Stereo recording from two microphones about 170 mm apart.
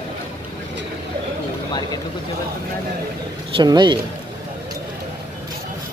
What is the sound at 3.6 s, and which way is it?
Speech, 25° right (ahead or behind).